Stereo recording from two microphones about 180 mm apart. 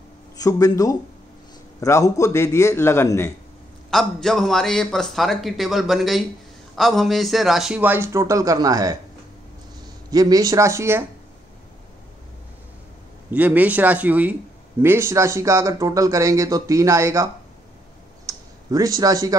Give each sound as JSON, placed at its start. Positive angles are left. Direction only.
{"t": 0.4, "sound": "a man's voice", "side_deg": 20}
{"t": 3.9, "sound": "a man's voice", "side_deg": 5}
{"t": 10.1, "sound": "speech", "side_deg": -20}
{"t": 13.3, "sound": "speech", "side_deg": -10}
{"t": 18.2, "sound": "a sound", "side_deg": -20}